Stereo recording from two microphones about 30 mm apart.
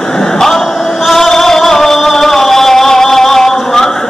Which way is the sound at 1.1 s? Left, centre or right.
Centre.